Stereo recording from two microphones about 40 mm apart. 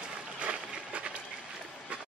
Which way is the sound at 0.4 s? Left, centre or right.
Right.